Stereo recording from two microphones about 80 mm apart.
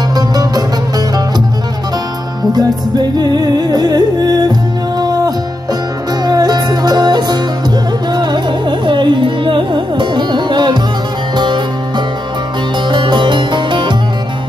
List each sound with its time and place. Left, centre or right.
0.1 s music: right
2.5 s music: right
12.9 s music: right